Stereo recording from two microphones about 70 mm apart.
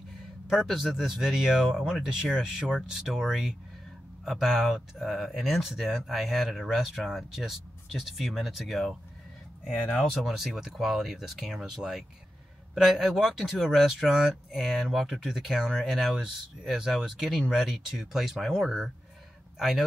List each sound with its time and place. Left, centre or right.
0.5 s speech: centre
10.1 s speech: centre